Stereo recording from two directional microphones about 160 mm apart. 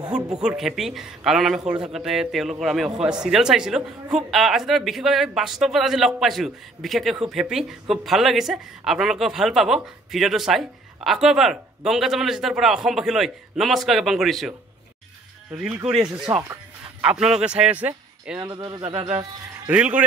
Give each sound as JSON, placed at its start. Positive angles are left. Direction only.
{"t": 0.1, "sound": "speech", "side_deg": -5}
{"t": 15.5, "sound": "speech", "side_deg": -15}
{"t": 15.8, "sound": "speech", "side_deg": -35}
{"t": 16.3, "sound": "speech", "side_deg": -15}
{"t": 17.2, "sound": "speech", "side_deg": -5}
{"t": 18.4, "sound": "speech", "side_deg": -25}
{"t": 19.7, "sound": "speech", "side_deg": -5}